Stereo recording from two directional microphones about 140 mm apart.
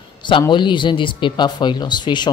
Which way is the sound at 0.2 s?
35° left (ahead or behind).